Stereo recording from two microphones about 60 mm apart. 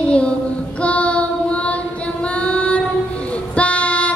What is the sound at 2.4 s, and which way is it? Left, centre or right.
Female singing, centre.